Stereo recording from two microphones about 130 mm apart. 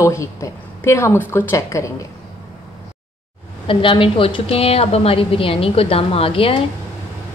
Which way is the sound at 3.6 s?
40° left (ahead or behind).